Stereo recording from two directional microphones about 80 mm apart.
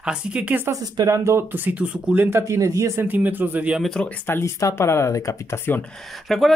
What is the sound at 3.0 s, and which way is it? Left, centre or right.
Speech, right.